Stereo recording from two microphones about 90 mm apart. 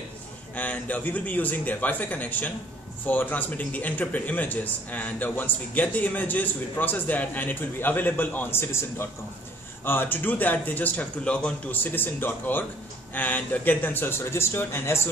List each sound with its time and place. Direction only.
0.6 s a man's voice: 15° left (ahead or behind)